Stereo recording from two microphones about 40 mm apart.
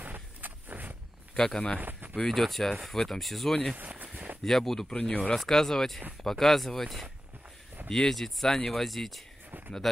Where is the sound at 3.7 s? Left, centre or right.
Right.